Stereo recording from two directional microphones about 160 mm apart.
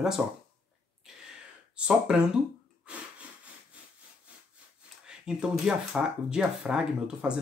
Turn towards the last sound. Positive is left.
turn(degrees=-5)  # may be behind; listen again after turning